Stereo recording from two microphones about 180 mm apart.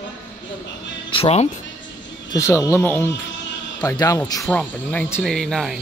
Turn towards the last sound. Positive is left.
turn(degrees=0)  # may be behind; listen again after turning